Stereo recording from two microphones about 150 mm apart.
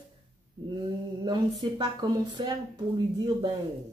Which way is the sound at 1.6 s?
35° right (ahead or behind).